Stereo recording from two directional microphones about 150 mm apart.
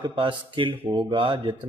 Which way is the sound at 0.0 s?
35° right (ahead or behind).